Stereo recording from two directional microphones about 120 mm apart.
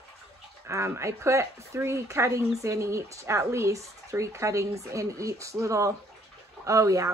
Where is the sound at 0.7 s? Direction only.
25° right (ahead or behind).